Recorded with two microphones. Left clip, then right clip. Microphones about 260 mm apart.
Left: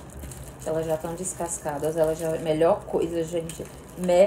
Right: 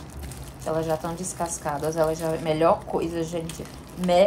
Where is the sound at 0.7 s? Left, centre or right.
Centre.